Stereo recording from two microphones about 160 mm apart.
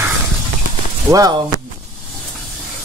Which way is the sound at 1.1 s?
20° right (ahead or behind).